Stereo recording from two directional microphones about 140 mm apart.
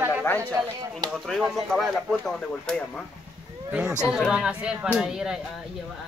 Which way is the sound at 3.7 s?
5° right (ahead or behind).